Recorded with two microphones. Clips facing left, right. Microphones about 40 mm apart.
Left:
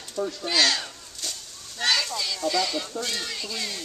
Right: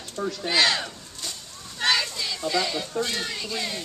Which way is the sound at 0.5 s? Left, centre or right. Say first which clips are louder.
Right 2 dB; centre.